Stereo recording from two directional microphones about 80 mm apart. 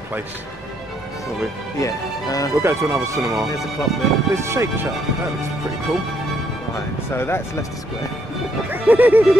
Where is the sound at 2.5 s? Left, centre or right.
Right.